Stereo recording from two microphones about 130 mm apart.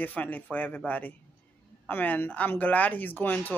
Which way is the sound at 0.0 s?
15° left (ahead or behind).